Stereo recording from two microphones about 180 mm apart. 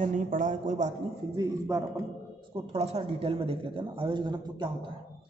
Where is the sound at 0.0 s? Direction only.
45° right (ahead or behind).